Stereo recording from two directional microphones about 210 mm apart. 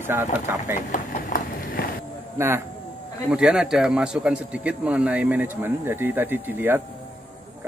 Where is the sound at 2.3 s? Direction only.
10° right (ahead or behind).